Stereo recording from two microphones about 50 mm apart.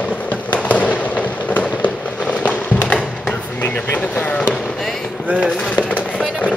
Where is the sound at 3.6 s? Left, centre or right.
Left.